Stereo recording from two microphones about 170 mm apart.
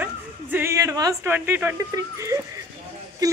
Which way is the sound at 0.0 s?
10° right (ahead or behind).